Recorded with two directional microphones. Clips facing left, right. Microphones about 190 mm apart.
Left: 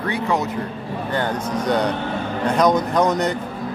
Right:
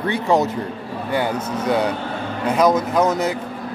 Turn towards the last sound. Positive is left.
turn(degrees=-5)  # may be behind; listen again after turning